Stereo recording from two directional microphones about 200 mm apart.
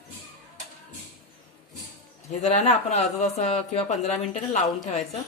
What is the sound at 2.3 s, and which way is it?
A woman's voice, 35° left (ahead or behind).